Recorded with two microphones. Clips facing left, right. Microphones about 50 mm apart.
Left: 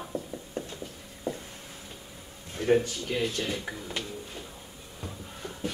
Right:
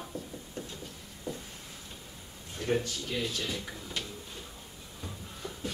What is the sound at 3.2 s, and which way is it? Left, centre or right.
Speech, left.